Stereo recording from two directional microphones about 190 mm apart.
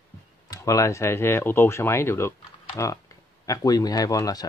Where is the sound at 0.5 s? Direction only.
15° left (ahead or behind).